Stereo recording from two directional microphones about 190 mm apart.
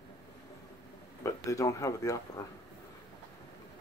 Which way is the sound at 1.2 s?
15° left (ahead or behind).